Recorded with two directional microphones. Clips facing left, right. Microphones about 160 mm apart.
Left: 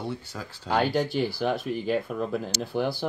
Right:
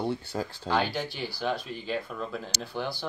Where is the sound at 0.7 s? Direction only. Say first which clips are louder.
Left 5 dB; 45° left (ahead or behind).